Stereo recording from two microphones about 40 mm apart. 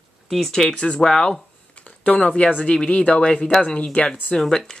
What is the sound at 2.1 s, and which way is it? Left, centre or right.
Speech, left.